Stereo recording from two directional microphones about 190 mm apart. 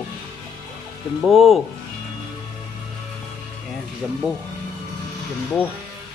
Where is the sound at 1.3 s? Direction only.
Centre (ahead or behind).